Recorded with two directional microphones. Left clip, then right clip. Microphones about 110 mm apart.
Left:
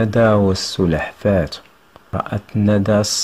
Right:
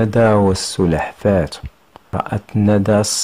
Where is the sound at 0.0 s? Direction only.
30° right (ahead or behind).